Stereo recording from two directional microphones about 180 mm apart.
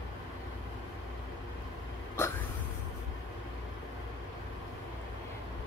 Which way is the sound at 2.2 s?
15° left (ahead or behind).